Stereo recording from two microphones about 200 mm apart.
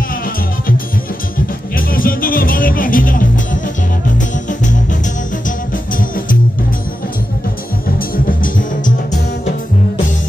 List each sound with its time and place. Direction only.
1.8 s music: 45° left (ahead or behind)
8.3 s music: 40° left (ahead or behind)